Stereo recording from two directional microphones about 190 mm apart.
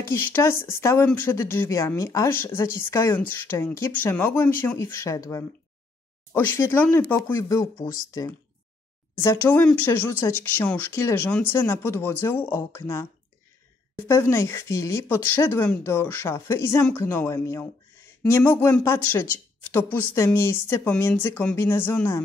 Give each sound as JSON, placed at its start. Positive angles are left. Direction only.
{"t": 0.0, "sound": "speech", "side_deg": 15}